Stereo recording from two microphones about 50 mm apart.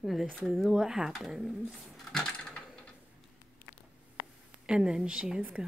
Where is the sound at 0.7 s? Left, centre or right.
Centre.